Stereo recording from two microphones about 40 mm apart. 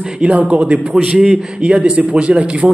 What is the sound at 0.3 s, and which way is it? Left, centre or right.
A man's voice, right.